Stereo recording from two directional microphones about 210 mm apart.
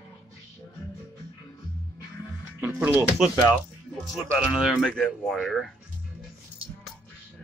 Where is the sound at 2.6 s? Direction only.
10° right (ahead or behind).